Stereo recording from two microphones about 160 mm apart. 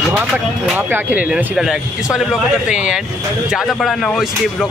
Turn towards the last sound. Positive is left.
turn(degrees=0)  # may be behind; listen again after turning